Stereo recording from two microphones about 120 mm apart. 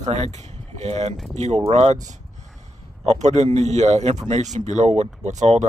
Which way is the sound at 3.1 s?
75° right (ahead or behind).